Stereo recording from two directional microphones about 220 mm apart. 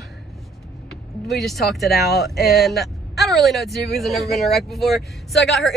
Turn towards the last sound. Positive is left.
turn(degrees=0)  # may be behind; listen again after turning